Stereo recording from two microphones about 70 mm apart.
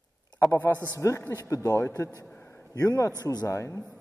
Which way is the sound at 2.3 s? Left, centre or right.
Left.